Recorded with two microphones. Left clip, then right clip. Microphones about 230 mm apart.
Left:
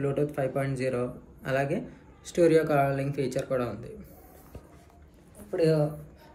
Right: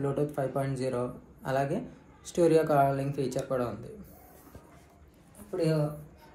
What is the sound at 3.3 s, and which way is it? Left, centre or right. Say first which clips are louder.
Speech: left 2 dB; right.